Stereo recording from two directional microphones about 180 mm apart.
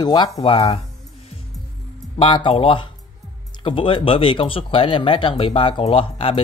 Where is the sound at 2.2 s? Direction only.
30° left (ahead or behind).